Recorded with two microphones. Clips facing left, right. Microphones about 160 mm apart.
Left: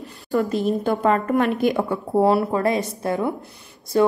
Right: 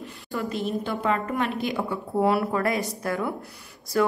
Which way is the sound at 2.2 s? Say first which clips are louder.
Left 4 dB; 30° left (ahead or behind).